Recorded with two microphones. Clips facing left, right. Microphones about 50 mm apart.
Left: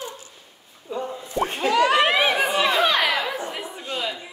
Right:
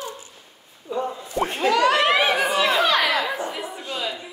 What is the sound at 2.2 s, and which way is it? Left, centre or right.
Chatter, left.